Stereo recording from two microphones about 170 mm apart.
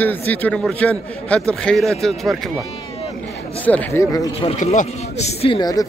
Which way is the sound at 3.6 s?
10° left (ahead or behind).